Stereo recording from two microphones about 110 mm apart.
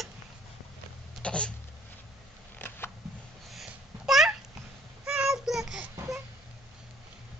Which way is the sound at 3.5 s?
5° right (ahead or behind).